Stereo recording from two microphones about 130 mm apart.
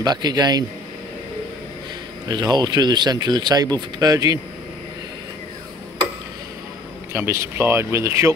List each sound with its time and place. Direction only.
0.0 s speech: 30° right (ahead or behind)
2.2 s speech: 30° right (ahead or behind)
7.1 s speech: 20° right (ahead or behind)